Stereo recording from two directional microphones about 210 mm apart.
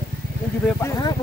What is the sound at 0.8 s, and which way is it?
Speech, 15° left (ahead or behind).